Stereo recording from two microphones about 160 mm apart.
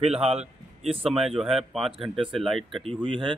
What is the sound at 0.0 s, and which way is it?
Speech, 40° right (ahead or behind).